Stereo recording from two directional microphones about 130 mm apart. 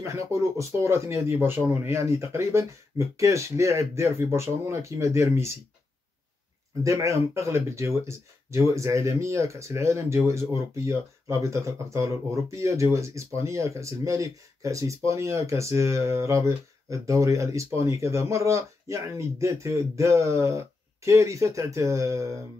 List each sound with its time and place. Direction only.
0.0 s speech: 20° right (ahead or behind)
6.8 s speech: 25° right (ahead or behind)